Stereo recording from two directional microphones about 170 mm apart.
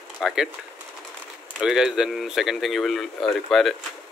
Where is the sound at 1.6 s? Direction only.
5° right (ahead or behind).